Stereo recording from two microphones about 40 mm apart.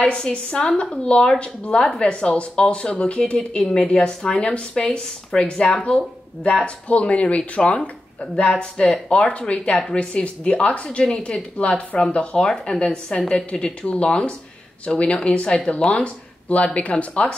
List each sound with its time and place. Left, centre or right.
0.0 s speech: left
1.8 s speech: centre
6.4 s speech: left
9.5 s speech: left